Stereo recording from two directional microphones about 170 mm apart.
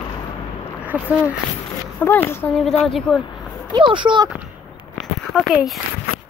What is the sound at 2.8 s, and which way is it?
Speech, centre (ahead or behind).